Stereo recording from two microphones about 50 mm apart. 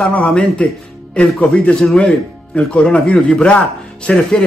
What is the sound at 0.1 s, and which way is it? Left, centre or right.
A man's voice, left.